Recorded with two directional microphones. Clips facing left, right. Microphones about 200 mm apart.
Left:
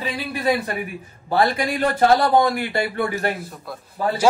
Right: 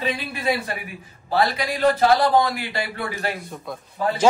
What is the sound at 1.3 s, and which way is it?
Speech, 50° left (ahead or behind).